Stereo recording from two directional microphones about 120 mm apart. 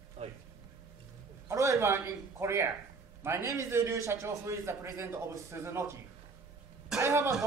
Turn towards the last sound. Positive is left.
turn(degrees=-25)  # may be behind; listen again after turning